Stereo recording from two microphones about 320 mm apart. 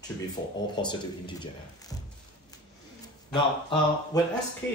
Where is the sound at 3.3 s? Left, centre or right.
Centre.